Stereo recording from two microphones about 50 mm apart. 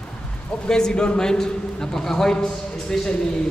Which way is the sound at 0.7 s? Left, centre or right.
Centre.